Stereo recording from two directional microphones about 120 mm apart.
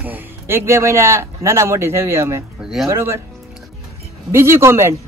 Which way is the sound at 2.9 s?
20° right (ahead or behind).